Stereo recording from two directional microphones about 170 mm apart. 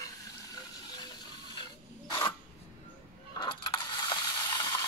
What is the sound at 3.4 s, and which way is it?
Mechanisms, 25° left (ahead or behind).